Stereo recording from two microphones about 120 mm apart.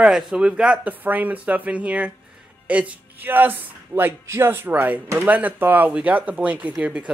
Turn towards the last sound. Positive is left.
turn(degrees=-10)  # may be behind; listen again after turning